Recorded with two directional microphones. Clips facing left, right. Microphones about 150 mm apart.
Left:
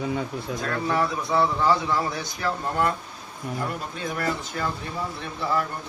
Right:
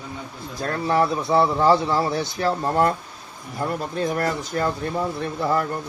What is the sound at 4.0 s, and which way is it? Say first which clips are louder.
Speech: right 5 dB; 40° right (ahead or behind).